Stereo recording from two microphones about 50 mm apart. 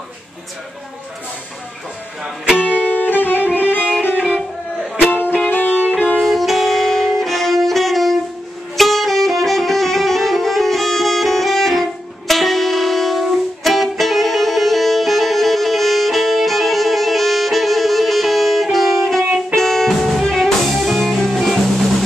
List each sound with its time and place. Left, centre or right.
2.2 s speech: centre
2.6 s music: left
5.5 s music: left
6.2 s saxophone: centre
8.7 s music: centre